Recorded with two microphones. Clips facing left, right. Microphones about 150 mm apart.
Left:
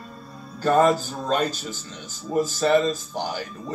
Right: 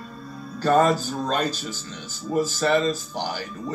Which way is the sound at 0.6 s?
15° left (ahead or behind).